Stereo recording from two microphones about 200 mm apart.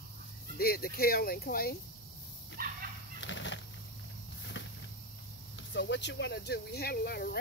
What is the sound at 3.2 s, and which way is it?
Bird flight, 65° left (ahead or behind).